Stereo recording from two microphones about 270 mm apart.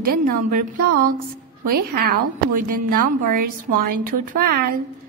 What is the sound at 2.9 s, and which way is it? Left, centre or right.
A woman's voice, right.